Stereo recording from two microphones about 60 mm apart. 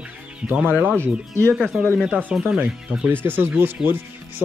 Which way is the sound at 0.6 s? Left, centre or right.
Right.